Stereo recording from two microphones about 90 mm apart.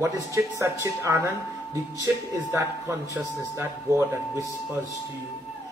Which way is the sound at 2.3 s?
35° right (ahead or behind).